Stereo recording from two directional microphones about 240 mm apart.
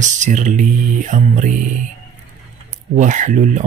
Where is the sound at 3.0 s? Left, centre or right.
Right.